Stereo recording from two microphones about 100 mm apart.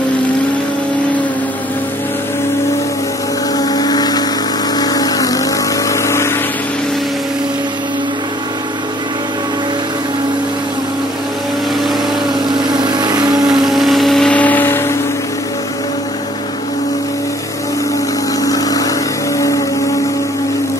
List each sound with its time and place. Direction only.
3.5 s vehicle: 40° left (ahead or behind)
12.7 s vehicle: 45° right (ahead or behind)
13.5 s vehicle: 5° right (ahead or behind)
14.3 s a sound: 15° left (ahead or behind)
18.4 s vehicle: 40° left (ahead or behind)